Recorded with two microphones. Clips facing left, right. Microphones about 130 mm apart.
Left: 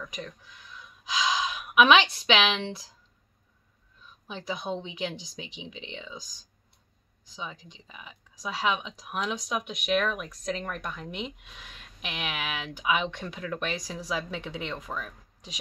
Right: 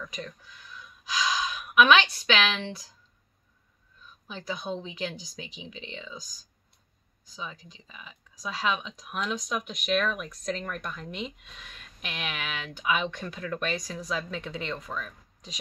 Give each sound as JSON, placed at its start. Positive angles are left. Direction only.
{"t": 0.0, "sound": "speech", "side_deg": 15}
{"t": 4.5, "sound": "a woman's voice", "side_deg": 20}
{"t": 5.4, "sound": "speech", "side_deg": 90}
{"t": 5.7, "sound": "speech", "side_deg": 15}
{"t": 7.4, "sound": "speech", "side_deg": 10}